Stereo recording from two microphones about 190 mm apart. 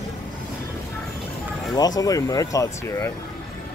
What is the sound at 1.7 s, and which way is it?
Speech, 20° left (ahead or behind).